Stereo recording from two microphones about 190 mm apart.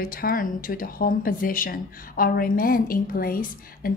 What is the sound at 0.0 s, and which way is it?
Speech, 50° left (ahead or behind).